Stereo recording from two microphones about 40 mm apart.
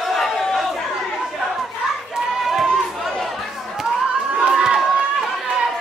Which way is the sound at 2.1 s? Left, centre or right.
Centre.